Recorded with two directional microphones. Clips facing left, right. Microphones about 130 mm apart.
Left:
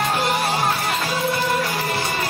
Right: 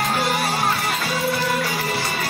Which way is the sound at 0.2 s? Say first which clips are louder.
Left 1 dB; centre (ahead or behind).